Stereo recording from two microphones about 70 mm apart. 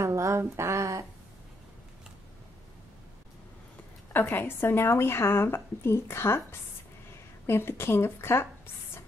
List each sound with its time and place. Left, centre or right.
0.0 s speech: right
4.1 s a woman's voice: left
7.4 s a woman's voice: left